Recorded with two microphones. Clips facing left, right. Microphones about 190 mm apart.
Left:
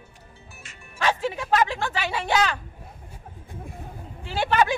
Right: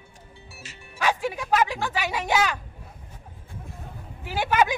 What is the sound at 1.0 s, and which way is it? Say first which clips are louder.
Speech: left 1 dB; 10° right (ahead or behind).